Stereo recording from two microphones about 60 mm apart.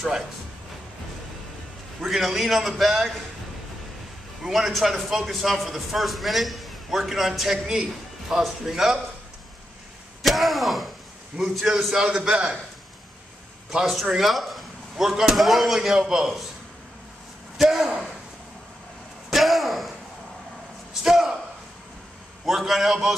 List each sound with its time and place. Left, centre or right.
2.0 s speech: centre
4.4 s a man's voice: centre
10.2 s a man's voice: centre
13.7 s speech: centre
17.6 s speech: centre
19.3 s a sound: centre
20.9 s a sound: centre
22.4 s speech: centre